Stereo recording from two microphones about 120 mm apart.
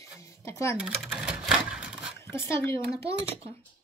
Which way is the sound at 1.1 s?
10° right (ahead or behind).